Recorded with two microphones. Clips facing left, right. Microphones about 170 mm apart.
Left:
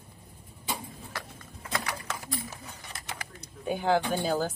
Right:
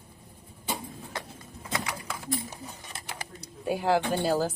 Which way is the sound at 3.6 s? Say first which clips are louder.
Right 1 dB; 5° right (ahead or behind).